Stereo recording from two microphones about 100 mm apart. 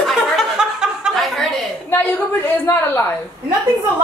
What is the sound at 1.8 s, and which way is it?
A woman's voice, 20° left (ahead or behind).